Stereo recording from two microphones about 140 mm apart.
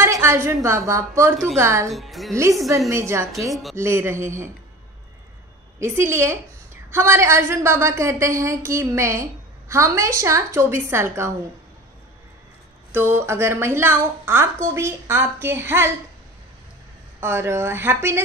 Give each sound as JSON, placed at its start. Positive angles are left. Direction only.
{"t": 0.0, "sound": "a woman's voice", "side_deg": -20}
{"t": 1.9, "sound": "a woman's voice", "side_deg": 0}
{"t": 2.9, "sound": "a woman's voice", "side_deg": -20}
{"t": 5.8, "sound": "a woman's voice", "side_deg": -20}
{"t": 12.9, "sound": "a woman's voice", "side_deg": -15}
{"t": 17.2, "sound": "a woman's voice", "side_deg": -15}